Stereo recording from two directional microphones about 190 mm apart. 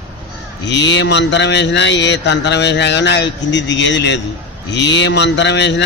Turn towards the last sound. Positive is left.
turn(degrees=65)  # may be behind; listen again after turning